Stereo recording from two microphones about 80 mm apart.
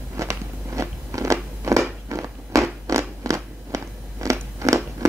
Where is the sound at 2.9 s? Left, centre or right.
Right.